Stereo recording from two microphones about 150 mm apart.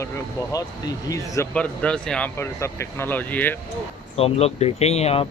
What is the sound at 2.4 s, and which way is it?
Speech, 15° left (ahead or behind).